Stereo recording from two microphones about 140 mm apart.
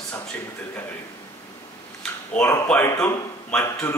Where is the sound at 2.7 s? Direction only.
5° left (ahead or behind).